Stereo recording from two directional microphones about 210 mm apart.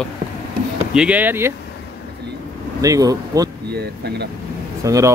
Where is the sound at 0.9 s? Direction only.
5° right (ahead or behind).